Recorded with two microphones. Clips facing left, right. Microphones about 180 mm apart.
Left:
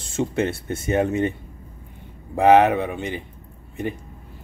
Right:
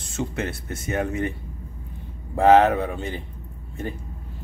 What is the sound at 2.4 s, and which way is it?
Speech, 15° left (ahead or behind).